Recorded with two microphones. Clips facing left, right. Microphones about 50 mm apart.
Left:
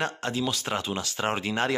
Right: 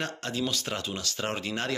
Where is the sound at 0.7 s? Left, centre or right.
Left.